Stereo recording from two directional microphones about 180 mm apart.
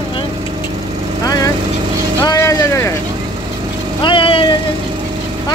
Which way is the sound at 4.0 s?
30° left (ahead or behind).